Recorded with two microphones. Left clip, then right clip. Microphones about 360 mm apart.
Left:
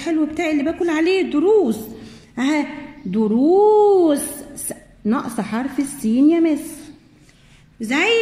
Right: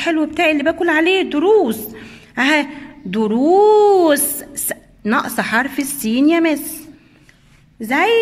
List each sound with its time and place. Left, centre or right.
0.0 s a woman's voice: right
7.8 s a woman's voice: centre